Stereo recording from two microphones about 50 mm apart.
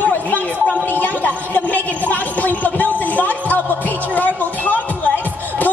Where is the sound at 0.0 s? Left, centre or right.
Left.